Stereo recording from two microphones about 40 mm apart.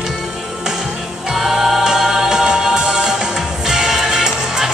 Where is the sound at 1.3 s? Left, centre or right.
Centre.